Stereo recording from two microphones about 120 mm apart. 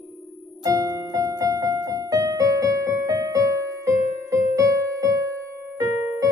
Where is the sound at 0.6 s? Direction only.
30° right (ahead or behind).